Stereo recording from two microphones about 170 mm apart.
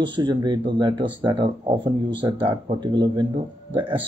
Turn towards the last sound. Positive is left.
turn(degrees=-30)  # may be behind; listen again after turning